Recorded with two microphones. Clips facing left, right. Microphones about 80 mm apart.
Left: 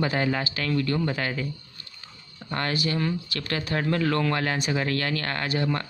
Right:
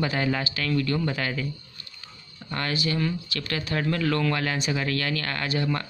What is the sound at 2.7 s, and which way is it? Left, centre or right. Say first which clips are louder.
Speech: even; left.